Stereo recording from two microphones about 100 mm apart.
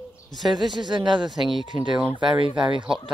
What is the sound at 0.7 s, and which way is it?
Speech, 50° right (ahead or behind).